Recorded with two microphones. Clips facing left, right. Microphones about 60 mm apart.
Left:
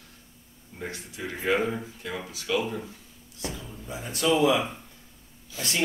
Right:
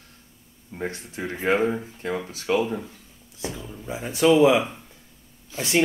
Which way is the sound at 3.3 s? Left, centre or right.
Right.